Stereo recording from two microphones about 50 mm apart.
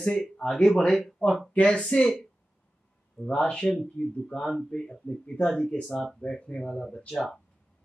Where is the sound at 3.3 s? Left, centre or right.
Left.